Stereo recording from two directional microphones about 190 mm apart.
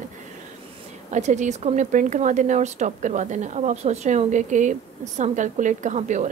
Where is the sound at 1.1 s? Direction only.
40° right (ahead or behind).